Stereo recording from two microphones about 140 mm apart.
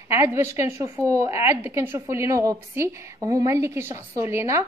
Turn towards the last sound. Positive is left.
turn(degrees=-20)  # may be behind; listen again after turning